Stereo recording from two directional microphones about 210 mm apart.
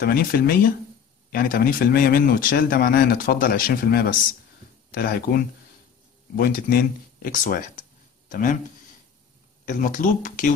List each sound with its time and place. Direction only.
0.0 s speech: 45° left (ahead or behind)
9.7 s speech: 40° left (ahead or behind)